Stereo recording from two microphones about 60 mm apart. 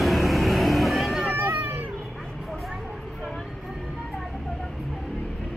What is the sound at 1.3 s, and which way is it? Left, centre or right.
Cat, right.